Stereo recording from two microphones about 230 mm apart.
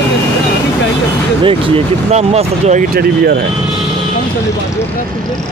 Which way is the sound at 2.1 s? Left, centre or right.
Right.